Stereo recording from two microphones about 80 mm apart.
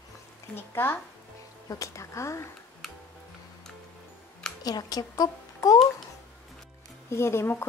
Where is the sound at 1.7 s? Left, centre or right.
Left.